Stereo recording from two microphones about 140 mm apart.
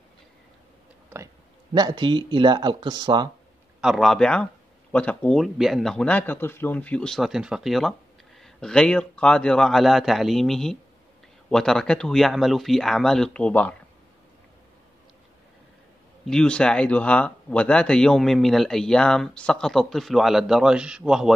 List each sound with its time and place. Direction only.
1.7 s speech: 30° right (ahead or behind)
3.8 s speech: centre (ahead or behind)
16.3 s speech: 5° left (ahead or behind)